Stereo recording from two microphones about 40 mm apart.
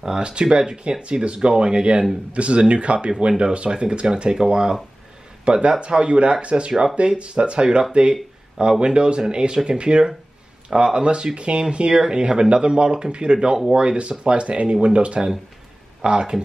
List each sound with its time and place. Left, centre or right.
0.2 s speech: right